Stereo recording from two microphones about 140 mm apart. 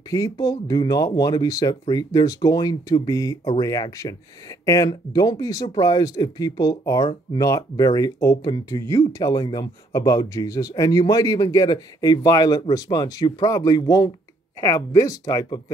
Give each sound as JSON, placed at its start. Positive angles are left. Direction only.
{"t": 0.1, "sound": "speech", "side_deg": 25}